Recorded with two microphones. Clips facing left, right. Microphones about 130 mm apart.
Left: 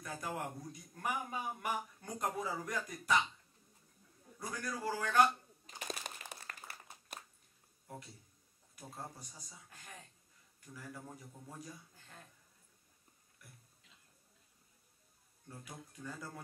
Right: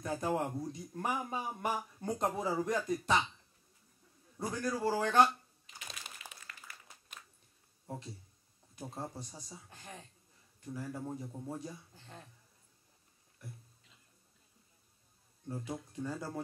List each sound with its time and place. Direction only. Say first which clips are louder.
0.0 s a man's voice: right 7 dB; 25° right (ahead or behind)
4.4 s a man's voice: right 7 dB; 25° right (ahead or behind)
5.7 s crumpling: left 6 dB; 45° left (ahead or behind)
6.8 s a sound: left 4 dB; 40° left (ahead or behind)
7.9 s a man's voice: right 6 dB; 25° right (ahead or behind)
13.4 s music: right 11 dB; 25° right (ahead or behind)
15.4 s a man's voice: right 10 dB; 25° right (ahead or behind)